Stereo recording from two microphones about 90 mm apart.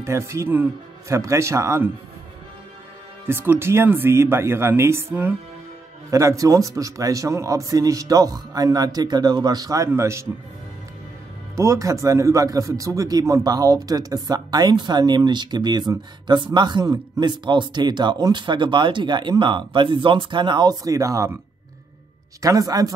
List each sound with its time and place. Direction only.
0.0 s a man's voice: 30° right (ahead or behind)
3.3 s speech: 25° right (ahead or behind)
6.0 s a man's voice: 35° right (ahead or behind)
9.8 s a man's voice: 30° right (ahead or behind)
11.5 s speech: 35° right (ahead or behind)
22.4 s a man's voice: 40° right (ahead or behind)